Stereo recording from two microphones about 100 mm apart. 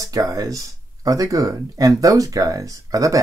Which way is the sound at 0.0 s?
35° right (ahead or behind).